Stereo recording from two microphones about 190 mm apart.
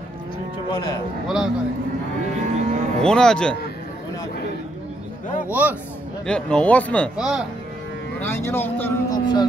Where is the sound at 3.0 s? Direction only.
5° left (ahead or behind).